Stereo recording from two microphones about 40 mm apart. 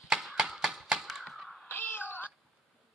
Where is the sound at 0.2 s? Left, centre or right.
Centre.